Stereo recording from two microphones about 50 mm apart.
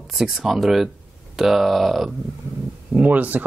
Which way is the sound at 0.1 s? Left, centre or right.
Centre.